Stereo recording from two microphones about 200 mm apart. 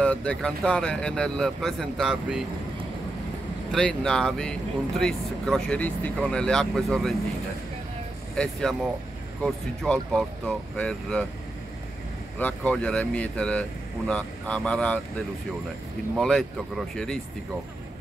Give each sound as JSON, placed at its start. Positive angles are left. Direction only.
{"t": 0.0, "sound": "speech", "side_deg": 5}
{"t": 3.7, "sound": "speech", "side_deg": 5}
{"t": 8.4, "sound": "speech", "side_deg": 0}
{"t": 12.4, "sound": "speech", "side_deg": 5}
{"t": 16.2, "sound": "speech", "side_deg": 0}